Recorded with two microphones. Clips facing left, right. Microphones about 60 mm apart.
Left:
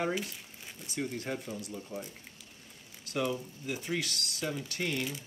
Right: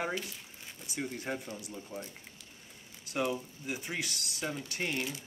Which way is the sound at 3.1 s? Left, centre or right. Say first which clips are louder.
Even; centre.